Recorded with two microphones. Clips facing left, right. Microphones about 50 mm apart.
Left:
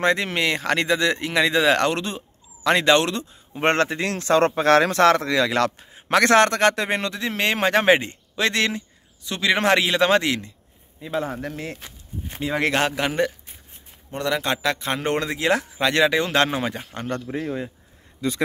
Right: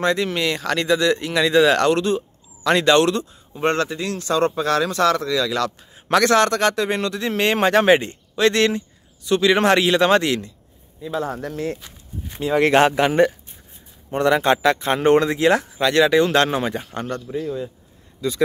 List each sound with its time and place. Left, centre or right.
0.0 s speech: left
3.6 s speech: left
4.6 s speech: left
7.2 s a man's voice: centre
11.0 s speech: left
12.4 s a man's voice: centre
12.7 s a man's voice: centre
14.4 s speech: centre
15.8 s a man's voice: centre
17.3 s a man's voice: left